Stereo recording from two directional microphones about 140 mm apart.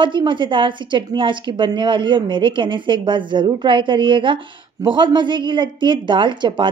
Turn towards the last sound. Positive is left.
turn(degrees=-35)  # may be behind; listen again after turning